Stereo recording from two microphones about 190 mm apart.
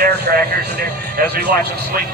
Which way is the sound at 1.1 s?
55° right (ahead or behind).